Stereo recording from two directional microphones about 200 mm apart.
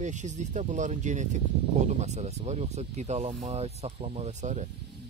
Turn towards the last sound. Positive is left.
turn(degrees=-35)  # may be behind; listen again after turning